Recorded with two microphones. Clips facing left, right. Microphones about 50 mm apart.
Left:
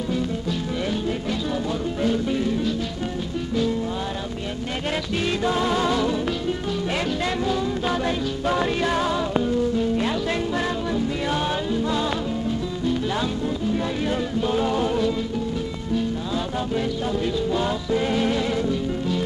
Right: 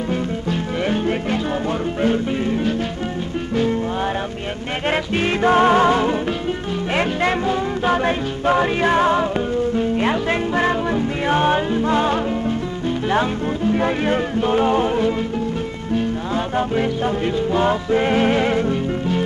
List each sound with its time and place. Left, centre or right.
0.1 s music: right
4.8 s music: right
16.5 s music: right